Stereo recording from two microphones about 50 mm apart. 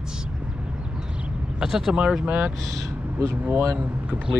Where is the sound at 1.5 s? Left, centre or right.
Centre.